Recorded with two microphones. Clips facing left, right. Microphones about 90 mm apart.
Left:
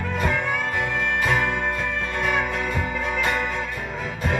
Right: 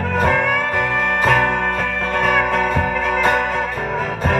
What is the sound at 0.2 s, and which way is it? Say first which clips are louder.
Music: right 7 dB; 55° right (ahead or behind).